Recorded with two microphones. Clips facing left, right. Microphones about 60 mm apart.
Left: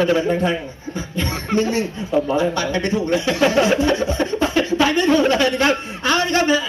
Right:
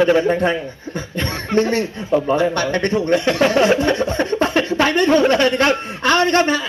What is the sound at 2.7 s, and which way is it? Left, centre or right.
Speech, right.